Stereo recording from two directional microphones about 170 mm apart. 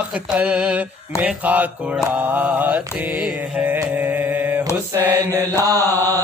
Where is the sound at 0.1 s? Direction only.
5° right (ahead or behind).